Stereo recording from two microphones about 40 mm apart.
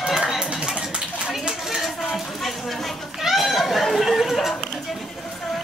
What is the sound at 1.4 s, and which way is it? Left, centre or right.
Dishes, centre.